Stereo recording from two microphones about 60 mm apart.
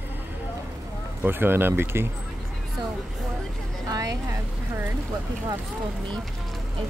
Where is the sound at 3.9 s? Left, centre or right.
Right.